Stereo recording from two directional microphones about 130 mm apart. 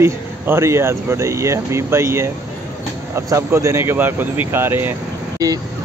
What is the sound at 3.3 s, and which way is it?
Speech, 25° right (ahead or behind).